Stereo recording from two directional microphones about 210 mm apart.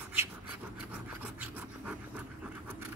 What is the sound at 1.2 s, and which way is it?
Filing, 10° right (ahead or behind).